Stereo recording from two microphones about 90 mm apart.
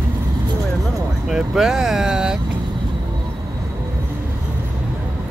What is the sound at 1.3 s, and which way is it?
Vehicle, 5° right (ahead or behind).